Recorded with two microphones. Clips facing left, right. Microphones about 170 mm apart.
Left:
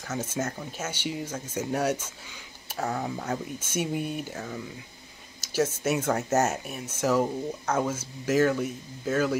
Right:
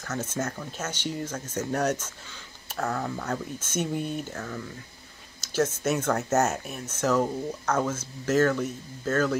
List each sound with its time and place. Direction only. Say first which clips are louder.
0.0 s speech: even; 10° left (ahead or behind)